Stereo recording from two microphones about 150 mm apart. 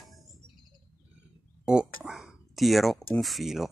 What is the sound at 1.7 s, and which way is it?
Speech, 5° right (ahead or behind).